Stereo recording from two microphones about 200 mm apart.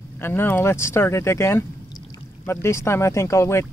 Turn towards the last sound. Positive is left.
turn(degrees=15)  # may be behind; listen again after turning